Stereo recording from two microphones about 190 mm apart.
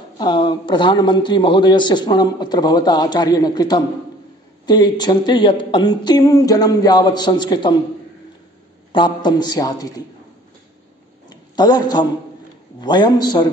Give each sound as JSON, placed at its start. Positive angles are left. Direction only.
{"t": 0.2, "sound": "a man's voice", "side_deg": 25}
{"t": 8.9, "sound": "a man's voice", "side_deg": 25}
{"t": 11.2, "sound": "a sound", "side_deg": 20}
{"t": 12.8, "sound": "a man's voice", "side_deg": 20}